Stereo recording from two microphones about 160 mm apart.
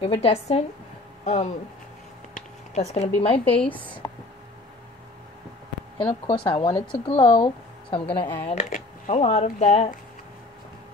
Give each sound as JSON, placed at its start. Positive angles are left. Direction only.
{"t": 0.0, "sound": "speech", "side_deg": 35}
{"t": 2.3, "sound": "a sound", "side_deg": 45}
{"t": 3.4, "sound": "speech", "side_deg": 10}
{"t": 5.9, "sound": "speech", "side_deg": 30}
{"t": 8.5, "sound": "speech", "side_deg": 50}